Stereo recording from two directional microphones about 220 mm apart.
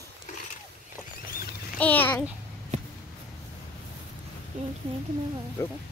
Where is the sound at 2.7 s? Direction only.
30° right (ahead or behind).